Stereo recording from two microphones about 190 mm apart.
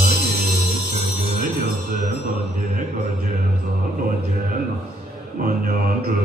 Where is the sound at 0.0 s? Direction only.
55° right (ahead or behind).